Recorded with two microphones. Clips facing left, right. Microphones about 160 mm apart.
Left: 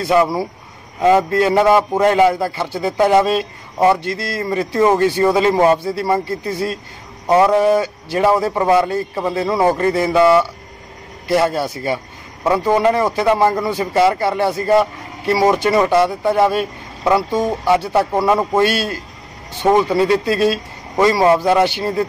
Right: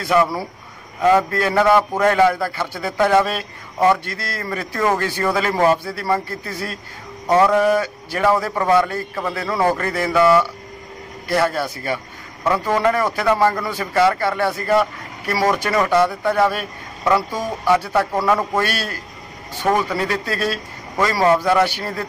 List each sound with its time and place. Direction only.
0.0 s speech: 20° left (ahead or behind)